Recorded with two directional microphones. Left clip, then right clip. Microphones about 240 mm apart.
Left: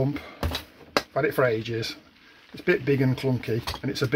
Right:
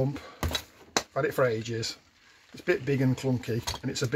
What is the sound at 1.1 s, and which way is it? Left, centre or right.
Speech, left.